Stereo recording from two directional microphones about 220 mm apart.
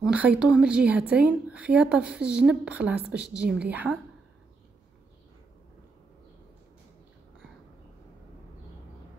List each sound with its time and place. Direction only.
0.0 s a woman's voice: 5° right (ahead or behind)